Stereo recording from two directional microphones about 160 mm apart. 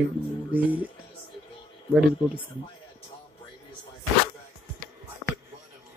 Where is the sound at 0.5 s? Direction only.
10° right (ahead or behind).